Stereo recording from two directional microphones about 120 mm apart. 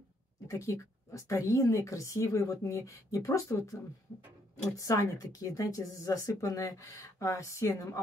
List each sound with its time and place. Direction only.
0.5 s speech: 25° left (ahead or behind)
4.7 s speech: 30° left (ahead or behind)